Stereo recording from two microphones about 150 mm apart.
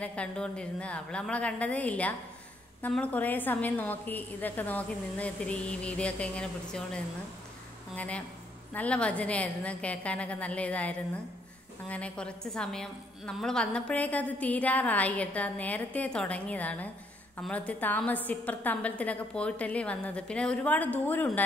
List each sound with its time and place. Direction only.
0.0 s a woman's voice: 10° left (ahead or behind)